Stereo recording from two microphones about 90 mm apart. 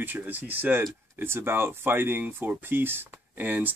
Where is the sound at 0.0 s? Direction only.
20° right (ahead or behind).